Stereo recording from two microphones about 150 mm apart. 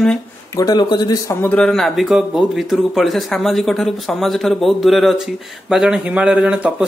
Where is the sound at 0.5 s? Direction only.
25° left (ahead or behind).